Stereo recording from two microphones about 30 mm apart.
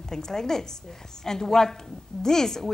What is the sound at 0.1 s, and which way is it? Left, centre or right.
A woman's voice, centre.